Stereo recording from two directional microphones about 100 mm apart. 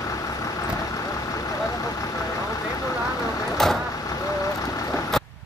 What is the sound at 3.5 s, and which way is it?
Vehicle, 5° left (ahead or behind).